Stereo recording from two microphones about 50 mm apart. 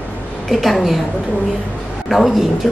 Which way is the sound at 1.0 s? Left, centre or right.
Left.